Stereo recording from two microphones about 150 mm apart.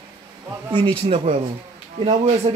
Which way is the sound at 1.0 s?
40° right (ahead or behind).